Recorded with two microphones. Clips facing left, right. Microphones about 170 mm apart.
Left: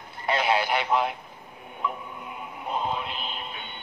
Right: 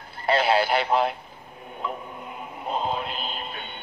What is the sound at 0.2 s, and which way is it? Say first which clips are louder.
Radio: right 3 dB; 30° right (ahead or behind).